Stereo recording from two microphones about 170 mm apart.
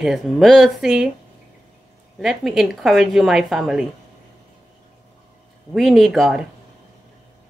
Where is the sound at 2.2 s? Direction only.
Centre (ahead or behind).